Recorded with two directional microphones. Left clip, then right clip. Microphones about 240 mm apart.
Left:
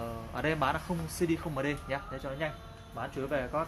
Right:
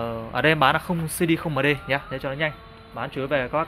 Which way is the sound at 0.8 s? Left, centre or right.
Right.